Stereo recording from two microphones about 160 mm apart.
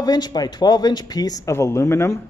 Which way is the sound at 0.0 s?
25° left (ahead or behind).